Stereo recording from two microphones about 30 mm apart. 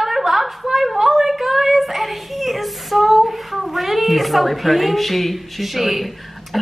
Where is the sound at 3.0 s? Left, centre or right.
Centre.